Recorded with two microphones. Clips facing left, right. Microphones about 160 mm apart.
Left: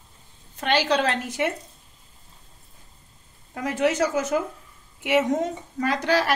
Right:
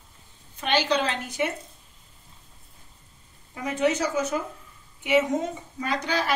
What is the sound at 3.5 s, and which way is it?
Speech, 85° left.